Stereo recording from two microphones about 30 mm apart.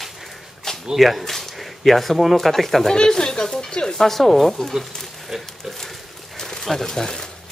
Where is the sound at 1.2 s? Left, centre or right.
Centre.